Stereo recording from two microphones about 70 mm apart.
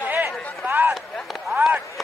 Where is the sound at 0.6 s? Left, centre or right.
Right.